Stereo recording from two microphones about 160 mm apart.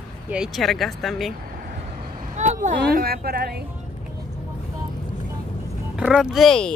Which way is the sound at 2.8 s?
70° right (ahead or behind).